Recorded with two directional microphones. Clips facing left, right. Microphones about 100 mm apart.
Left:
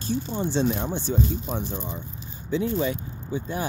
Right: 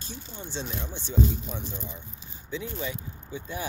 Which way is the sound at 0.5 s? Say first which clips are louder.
Left 10 dB; 55° left (ahead or behind).